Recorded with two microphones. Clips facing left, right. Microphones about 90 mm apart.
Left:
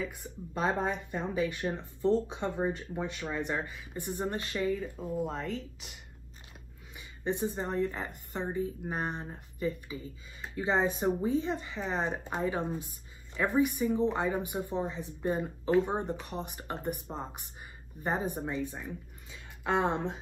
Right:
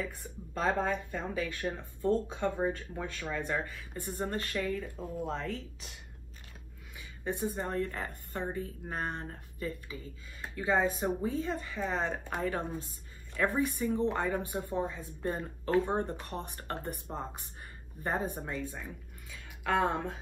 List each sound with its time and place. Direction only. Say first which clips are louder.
0.6 s a woman's voice: even; 15° left (ahead or behind)
4.7 s speech: left 3 dB; 5° left (ahead or behind)
7.0 s a woman's voice: left 3 dB; 20° left (ahead or behind)
19.3 s a sound: even; 20° left (ahead or behind)